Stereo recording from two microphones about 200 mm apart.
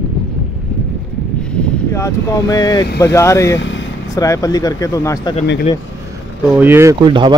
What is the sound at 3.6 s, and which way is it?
Vehicle, 65° left (ahead or behind).